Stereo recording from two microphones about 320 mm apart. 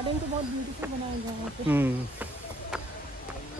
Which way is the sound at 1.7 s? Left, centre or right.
Centre.